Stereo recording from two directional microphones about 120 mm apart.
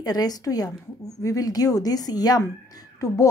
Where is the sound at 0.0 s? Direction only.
30° left (ahead or behind).